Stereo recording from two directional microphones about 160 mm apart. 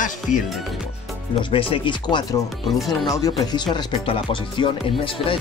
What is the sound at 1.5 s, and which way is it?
Speech, 35° left (ahead or behind).